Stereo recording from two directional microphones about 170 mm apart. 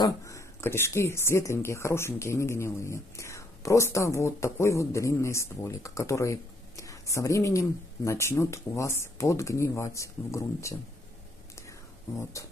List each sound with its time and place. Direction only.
0.0 s speech: 20° left (ahead or behind)